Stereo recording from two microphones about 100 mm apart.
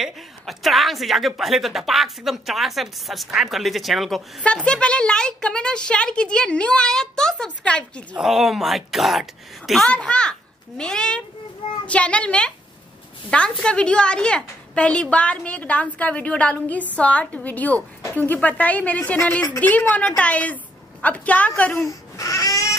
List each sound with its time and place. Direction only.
0.0 s a woman's voice: centre (ahead or behind)
4.6 s a woman's voice: 10° left (ahead or behind)
8.2 s a woman's voice: centre (ahead or behind)
9.8 s a woman's voice: 10° left (ahead or behind)
21.7 s speech: 35° left (ahead or behind)